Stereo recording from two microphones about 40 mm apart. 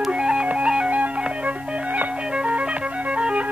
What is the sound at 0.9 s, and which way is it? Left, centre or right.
Music, right.